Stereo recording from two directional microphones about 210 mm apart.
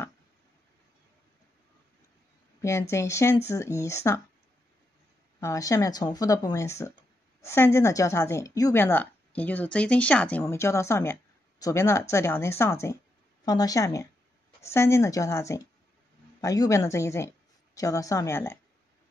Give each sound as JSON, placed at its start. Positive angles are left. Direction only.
{"t": 2.9, "sound": "a woman's voice", "side_deg": 15}
{"t": 5.4, "sound": "a woman's voice", "side_deg": 15}